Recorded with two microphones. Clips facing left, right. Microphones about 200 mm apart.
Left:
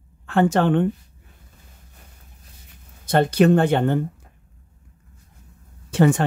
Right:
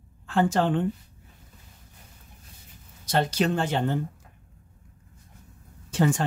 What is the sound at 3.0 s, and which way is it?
Speech, 55° left (ahead or behind).